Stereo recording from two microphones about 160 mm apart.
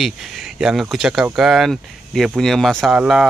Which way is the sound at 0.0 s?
Centre (ahead or behind).